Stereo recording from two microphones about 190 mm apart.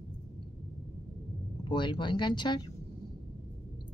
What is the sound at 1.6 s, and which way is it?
Speech, 25° left (ahead or behind).